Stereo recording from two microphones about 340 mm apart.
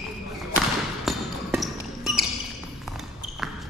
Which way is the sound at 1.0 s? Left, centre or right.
Centre.